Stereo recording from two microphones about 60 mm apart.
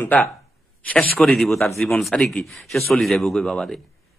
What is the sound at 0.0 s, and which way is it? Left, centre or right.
Speech, left.